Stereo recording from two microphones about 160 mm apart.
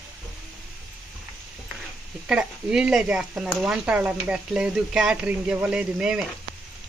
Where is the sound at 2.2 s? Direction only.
5° right (ahead or behind).